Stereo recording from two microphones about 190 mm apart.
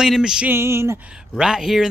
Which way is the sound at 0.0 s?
5° right (ahead or behind).